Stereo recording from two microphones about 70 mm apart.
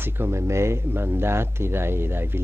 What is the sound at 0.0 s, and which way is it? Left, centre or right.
Speech, right.